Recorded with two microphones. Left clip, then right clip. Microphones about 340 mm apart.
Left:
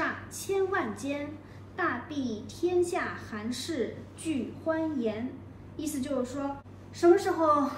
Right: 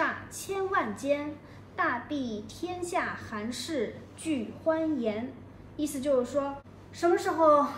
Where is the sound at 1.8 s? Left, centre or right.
Right.